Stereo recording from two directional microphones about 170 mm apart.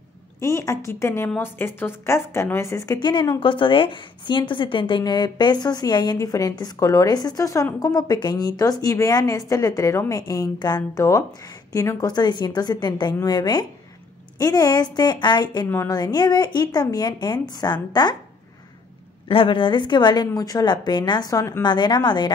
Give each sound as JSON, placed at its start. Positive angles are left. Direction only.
{"t": 0.4, "sound": "a woman's voice", "side_deg": 15}
{"t": 19.2, "sound": "a woman's voice", "side_deg": 30}